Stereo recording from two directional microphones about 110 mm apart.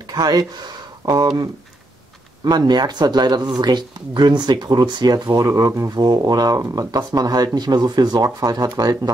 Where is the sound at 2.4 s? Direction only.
40° right (ahead or behind).